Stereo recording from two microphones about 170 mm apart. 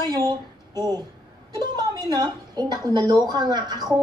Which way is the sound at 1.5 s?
25° right (ahead or behind).